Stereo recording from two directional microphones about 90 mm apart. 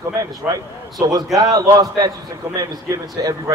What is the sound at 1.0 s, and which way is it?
A man's voice, 40° right (ahead or behind).